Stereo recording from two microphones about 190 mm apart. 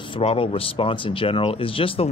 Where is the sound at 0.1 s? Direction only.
30° left (ahead or behind).